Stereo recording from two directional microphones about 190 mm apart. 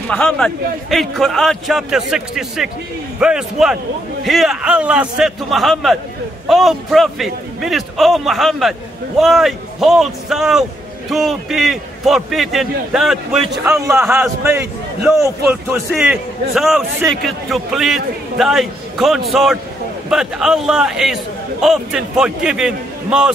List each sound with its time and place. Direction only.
0.1 s a man's voice: 5° left (ahead or behind)
13.7 s a man's voice: 15° right (ahead or behind)